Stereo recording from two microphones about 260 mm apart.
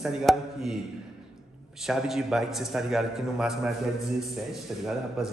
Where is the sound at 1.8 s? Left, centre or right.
Centre.